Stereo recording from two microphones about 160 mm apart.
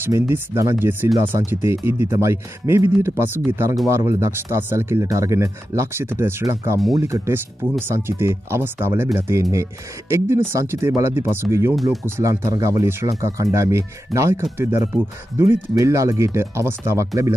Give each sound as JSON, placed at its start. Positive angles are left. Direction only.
{"t": 0.0, "sound": "speech", "side_deg": -15}
{"t": 11.7, "sound": "speech", "side_deg": 0}
{"t": 12.2, "sound": "speech", "side_deg": -20}